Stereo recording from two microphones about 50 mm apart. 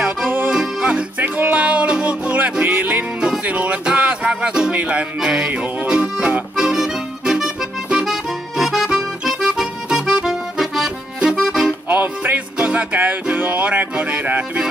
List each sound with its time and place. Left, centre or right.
0.5 s music: centre
1.2 s music: right
5.5 s accordion: right
11.9 s music: right